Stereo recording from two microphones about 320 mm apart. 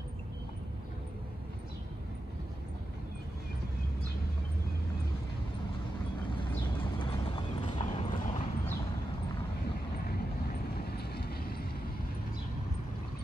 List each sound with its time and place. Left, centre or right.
6.3 s clip-clop: centre
10.9 s vehicle: left